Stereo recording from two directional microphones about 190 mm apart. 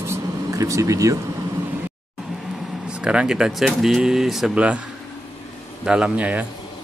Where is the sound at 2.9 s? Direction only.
5° right (ahead or behind).